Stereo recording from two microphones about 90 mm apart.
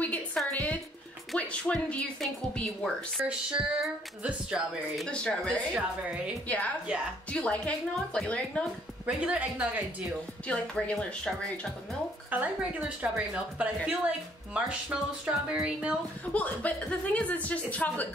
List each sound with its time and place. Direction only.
0.0 s a sound: 15° left (ahead or behind)
1.3 s a woman's voice: 10° left (ahead or behind)
3.3 s a woman's voice: 10° right (ahead or behind)
5.0 s a woman's voice: 10° left (ahead or behind)
9.0 s a woman's voice: 15° right (ahead or behind)
10.4 s a woman's voice: 15° left (ahead or behind)
12.3 s a woman's voice: 15° right (ahead or behind)
16.3 s a woman's voice: 15° left (ahead or behind)